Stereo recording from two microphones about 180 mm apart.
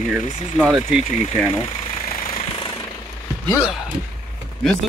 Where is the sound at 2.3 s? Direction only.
30° left (ahead or behind).